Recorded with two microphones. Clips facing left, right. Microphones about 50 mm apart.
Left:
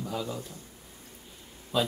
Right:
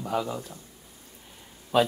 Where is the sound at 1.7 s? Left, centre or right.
Right.